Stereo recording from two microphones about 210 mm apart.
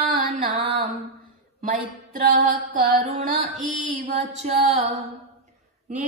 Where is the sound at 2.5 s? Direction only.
40° right (ahead or behind).